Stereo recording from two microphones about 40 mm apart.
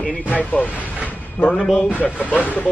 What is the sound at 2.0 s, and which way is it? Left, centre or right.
Speech, left.